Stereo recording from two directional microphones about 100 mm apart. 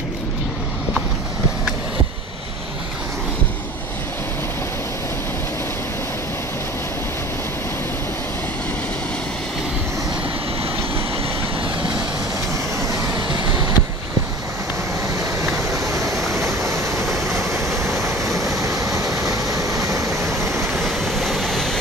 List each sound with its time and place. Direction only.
13.3 s vehicle: 45° right (ahead or behind)
15.1 s a sound: 30° right (ahead or behind)
16.5 s vehicle: 30° right (ahead or behind)
17.1 s train: 30° right (ahead or behind)
17.6 s waves: centre (ahead or behind)
18.4 s vehicle: 35° right (ahead or behind)
20.7 s vehicle: centre (ahead or behind)